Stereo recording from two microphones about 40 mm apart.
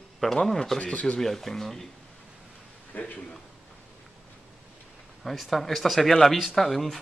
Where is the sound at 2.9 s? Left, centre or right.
Left.